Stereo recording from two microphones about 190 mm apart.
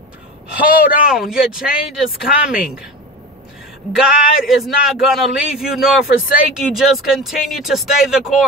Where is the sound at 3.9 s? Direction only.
Centre (ahead or behind).